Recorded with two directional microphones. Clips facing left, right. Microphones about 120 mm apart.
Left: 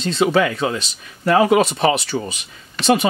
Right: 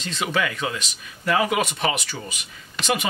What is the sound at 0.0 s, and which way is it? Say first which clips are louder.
Speech: left 9 dB; 30° left (ahead or behind).